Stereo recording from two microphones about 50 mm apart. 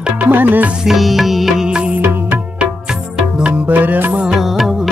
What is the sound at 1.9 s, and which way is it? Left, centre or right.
Music, right.